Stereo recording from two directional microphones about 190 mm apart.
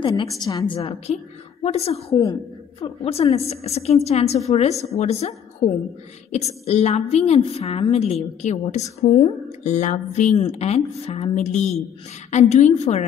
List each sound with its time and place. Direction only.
0.0 s a woman's voice: 25° left (ahead or behind)
0.7 s a woman's voice: 35° left (ahead or behind)